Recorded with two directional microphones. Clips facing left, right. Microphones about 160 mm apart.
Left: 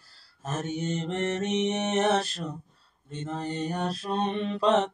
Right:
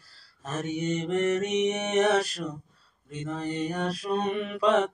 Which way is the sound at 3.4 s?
5° right (ahead or behind).